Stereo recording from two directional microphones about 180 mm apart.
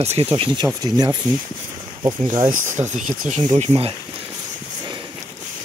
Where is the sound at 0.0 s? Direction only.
35° right (ahead or behind).